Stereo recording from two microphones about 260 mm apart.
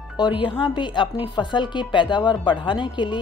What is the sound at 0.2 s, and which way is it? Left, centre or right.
A woman's voice, centre.